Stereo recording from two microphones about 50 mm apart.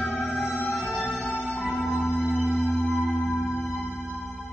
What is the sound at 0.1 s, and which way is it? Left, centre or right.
Music, left.